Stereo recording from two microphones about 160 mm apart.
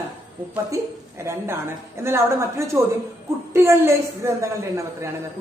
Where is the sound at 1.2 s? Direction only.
15° right (ahead or behind).